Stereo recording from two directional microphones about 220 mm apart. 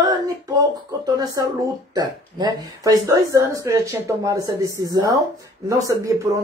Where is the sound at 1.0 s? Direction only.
15° right (ahead or behind).